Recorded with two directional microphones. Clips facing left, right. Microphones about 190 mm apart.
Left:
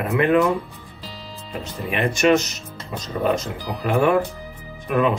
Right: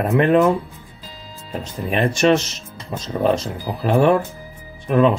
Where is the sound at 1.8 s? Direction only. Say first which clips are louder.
Right 2 dB; 35° right (ahead or behind).